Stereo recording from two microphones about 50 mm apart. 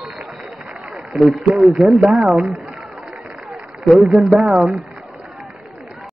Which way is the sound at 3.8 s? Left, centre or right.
Centre.